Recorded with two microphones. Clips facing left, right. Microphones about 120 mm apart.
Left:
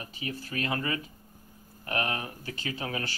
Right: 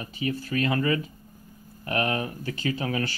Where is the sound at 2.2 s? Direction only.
20° left (ahead or behind).